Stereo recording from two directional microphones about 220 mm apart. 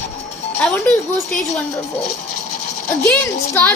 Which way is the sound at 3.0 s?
10° left (ahead or behind).